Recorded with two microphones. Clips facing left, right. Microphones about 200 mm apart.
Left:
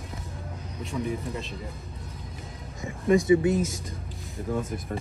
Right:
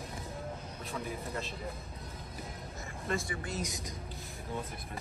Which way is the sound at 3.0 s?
15° left (ahead or behind).